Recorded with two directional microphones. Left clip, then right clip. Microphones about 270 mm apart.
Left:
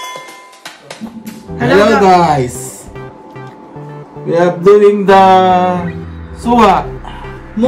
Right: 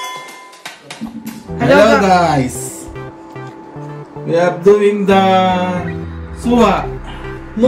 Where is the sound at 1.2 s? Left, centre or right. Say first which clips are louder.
Even; centre.